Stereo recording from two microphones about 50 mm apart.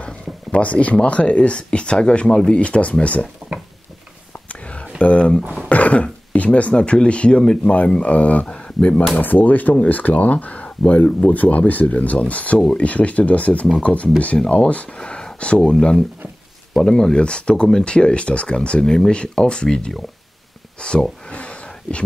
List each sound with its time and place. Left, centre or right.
0.0 s a sound: left
1.0 s speech: left
4.5 s a sound: left
5.4 s speech: right
5.7 s throat clearing: left
6.3 s speech: left
7.7 s speech: left
8.5 s speech: centre
9.1 s speech: left
15.0 s speech: centre